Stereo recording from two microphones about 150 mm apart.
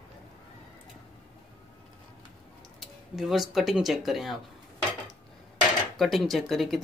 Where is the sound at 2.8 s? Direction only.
Centre (ahead or behind).